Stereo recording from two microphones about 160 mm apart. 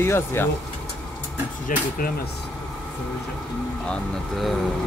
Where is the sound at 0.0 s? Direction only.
15° left (ahead or behind).